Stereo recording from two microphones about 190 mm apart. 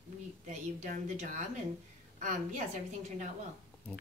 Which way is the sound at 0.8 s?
40° right (ahead or behind).